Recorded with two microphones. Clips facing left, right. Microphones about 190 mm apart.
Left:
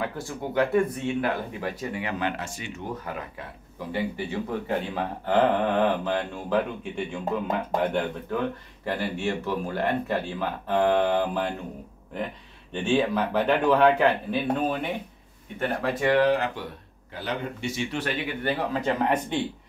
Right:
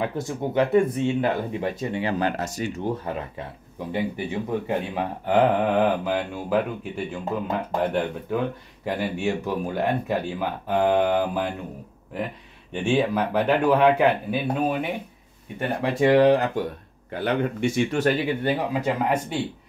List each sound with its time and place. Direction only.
0.0 s speech: 20° right (ahead or behind); by 3.2 s 35° right (ahead or behind)
3.9 s speech: 15° right (ahead or behind)
12.8 s speech: 10° right (ahead or behind)
15.8 s speech: 25° right (ahead or behind)
17.1 s speech: 55° right (ahead or behind)
18.4 s speech: 15° right (ahead or behind)